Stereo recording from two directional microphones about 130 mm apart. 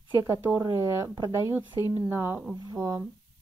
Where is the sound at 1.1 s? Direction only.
30° right (ahead or behind).